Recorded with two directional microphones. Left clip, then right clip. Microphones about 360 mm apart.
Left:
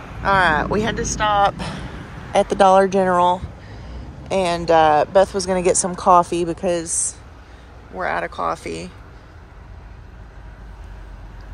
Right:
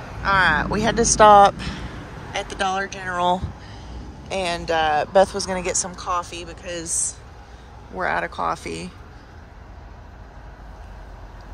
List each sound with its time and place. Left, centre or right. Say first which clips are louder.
0.2 s speech: left 2 dB; centre
1.6 s a woman's voice: left 2 dB; centre